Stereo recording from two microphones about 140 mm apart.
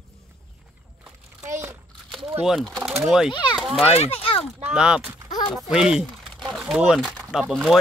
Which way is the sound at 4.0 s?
45° left (ahead or behind).